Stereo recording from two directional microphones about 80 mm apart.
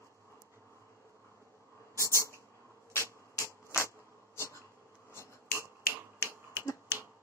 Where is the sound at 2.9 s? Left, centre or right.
Left.